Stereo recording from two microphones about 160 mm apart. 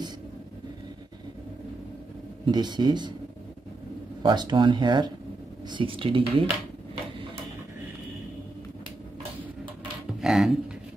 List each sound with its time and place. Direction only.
2.4 s speech: 25° right (ahead or behind)
4.2 s speech: 30° right (ahead or behind)
10.2 s a sound: centre (ahead or behind)